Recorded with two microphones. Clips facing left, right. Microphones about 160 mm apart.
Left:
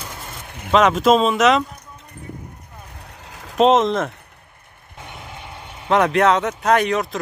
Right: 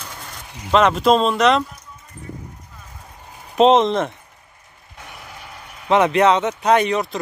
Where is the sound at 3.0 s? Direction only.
90° left.